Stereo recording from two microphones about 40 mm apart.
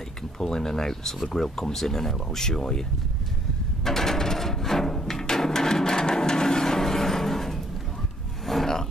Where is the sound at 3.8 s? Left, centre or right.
Centre.